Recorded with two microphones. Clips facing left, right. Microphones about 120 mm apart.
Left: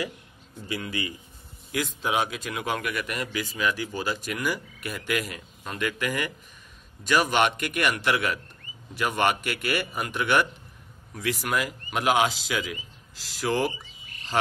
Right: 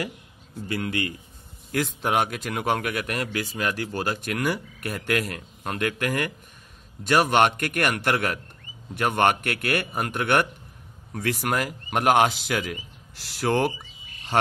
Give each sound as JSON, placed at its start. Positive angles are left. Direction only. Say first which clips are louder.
{"t": 0.7, "sound": "a man's voice", "louder": "right 4 dB", "side_deg": -60}